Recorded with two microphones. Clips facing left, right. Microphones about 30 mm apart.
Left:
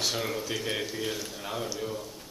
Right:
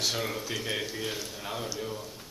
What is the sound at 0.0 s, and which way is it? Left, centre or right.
Speech, centre.